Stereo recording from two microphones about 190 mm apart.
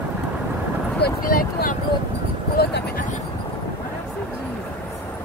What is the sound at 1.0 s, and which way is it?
Speech, 50° left (ahead or behind).